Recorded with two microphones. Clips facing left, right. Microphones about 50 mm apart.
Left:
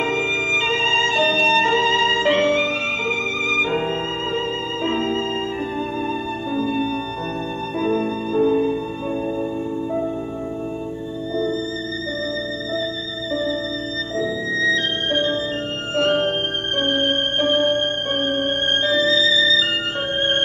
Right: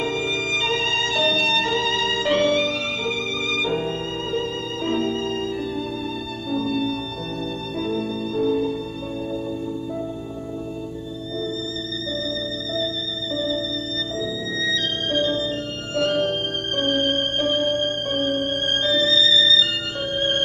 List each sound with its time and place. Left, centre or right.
0.0 s music: left
6.5 s music: left
14.1 s music: left